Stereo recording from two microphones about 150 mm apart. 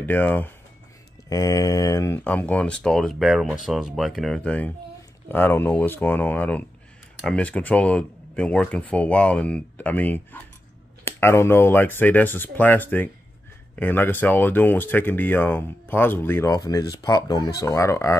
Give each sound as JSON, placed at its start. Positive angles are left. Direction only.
{"t": 0.0, "sound": "speech", "side_deg": 10}
{"t": 1.3, "sound": "speech", "side_deg": 25}